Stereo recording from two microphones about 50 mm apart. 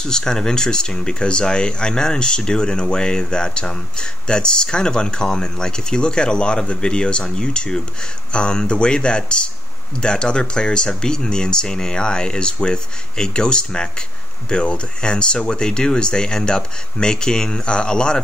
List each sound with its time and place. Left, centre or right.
0.0 s speech: centre